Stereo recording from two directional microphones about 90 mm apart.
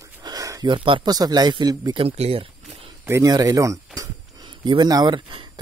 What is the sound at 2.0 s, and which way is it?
Speech, 90° right.